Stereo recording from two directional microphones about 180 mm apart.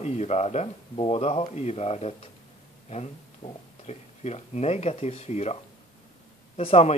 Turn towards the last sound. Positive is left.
turn(degrees=35)  # may be behind; listen again after turning